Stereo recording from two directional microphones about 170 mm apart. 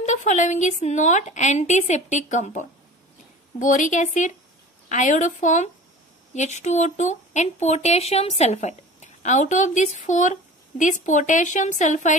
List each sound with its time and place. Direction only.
0.0 s speech: 45° left (ahead or behind)